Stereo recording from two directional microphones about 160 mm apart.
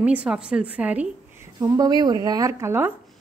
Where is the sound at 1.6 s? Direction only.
25° right (ahead or behind).